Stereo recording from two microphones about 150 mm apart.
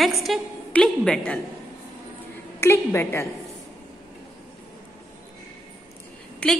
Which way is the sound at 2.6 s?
15° left (ahead or behind).